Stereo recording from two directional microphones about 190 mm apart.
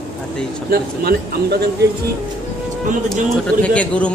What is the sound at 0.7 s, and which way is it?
Speech, 55° right (ahead or behind).